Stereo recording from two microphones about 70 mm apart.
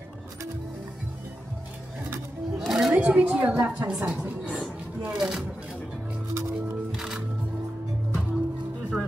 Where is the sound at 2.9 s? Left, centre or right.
Centre.